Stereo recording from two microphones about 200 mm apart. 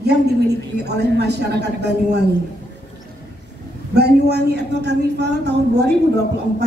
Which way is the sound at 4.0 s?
55° right (ahead or behind).